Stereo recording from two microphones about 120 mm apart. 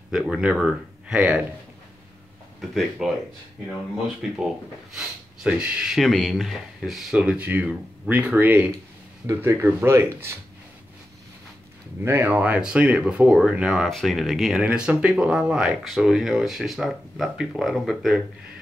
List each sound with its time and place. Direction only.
0.1 s speech: 5° right (ahead or behind)
2.6 s speech: centre (ahead or behind)
4.2 s speech: 5° right (ahead or behind); by 10.3 s 20° right (ahead or behind)
12.0 s speech: 20° right (ahead or behind); by 18.2 s centre (ahead or behind)